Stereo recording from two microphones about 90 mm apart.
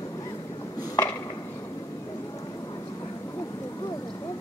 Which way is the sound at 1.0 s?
30° left (ahead or behind).